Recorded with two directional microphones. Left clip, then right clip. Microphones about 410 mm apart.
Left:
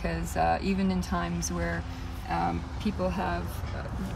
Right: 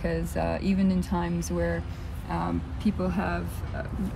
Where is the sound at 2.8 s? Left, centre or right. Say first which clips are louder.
Even; centre.